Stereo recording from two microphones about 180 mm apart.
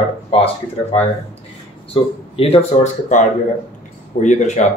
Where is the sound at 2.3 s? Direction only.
30° left (ahead or behind).